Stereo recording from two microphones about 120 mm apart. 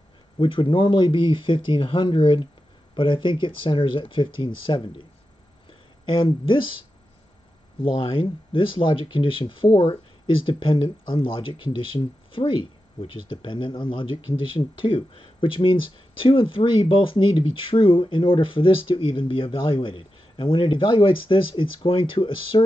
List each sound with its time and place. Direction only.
0.4 s speech: 45° left (ahead or behind)
7.8 s speech: 45° left (ahead or behind)